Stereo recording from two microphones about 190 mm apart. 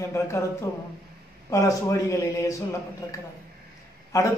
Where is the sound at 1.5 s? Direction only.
15° left (ahead or behind).